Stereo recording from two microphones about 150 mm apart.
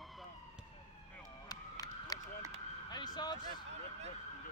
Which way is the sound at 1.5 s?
25° left (ahead or behind).